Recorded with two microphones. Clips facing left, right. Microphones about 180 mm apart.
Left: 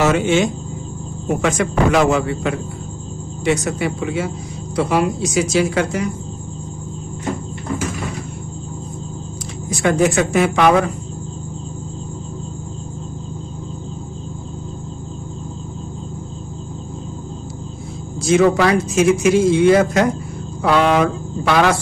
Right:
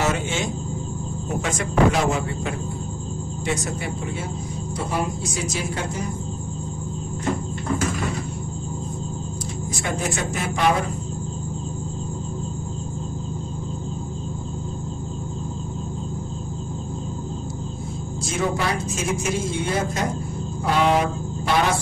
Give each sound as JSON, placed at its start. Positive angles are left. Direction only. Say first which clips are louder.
{"t": 0.0, "sound": "a man's voice", "louder": "left 9 dB", "side_deg": 75}
{"t": 9.7, "sound": "speech", "louder": "left 12 dB", "side_deg": 80}
{"t": 18.2, "sound": "a man's voice", "louder": "left 11 dB", "side_deg": 85}